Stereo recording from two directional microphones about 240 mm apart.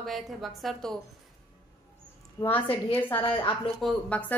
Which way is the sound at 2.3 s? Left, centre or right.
Centre.